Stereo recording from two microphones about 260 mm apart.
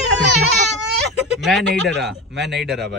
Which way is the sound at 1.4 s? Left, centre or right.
Centre.